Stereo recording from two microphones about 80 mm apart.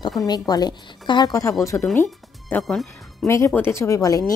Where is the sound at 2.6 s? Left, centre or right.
Centre.